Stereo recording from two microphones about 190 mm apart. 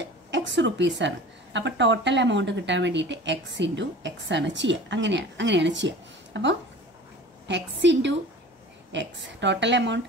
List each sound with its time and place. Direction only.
0.0 s a woman's voice: 70° right (ahead or behind)
7.8 s a woman's voice: 70° right (ahead or behind)